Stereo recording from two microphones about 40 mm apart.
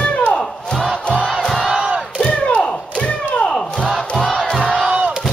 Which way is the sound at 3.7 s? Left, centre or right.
Centre.